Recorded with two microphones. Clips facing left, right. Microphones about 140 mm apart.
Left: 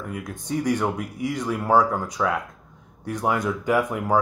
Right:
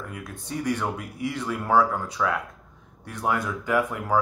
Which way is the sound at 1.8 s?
15° left (ahead or behind).